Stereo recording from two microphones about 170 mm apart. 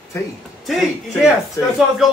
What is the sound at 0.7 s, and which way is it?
Speech, centre (ahead or behind).